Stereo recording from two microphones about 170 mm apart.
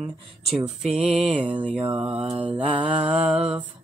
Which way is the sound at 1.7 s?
25° right (ahead or behind).